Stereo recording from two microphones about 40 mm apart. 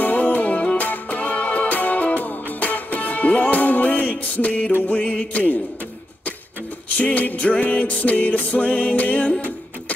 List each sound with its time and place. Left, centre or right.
0.0 s music: left
7.2 s music: left